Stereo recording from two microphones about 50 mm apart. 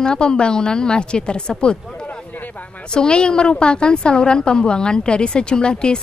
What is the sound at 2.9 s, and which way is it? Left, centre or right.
A woman's voice, centre.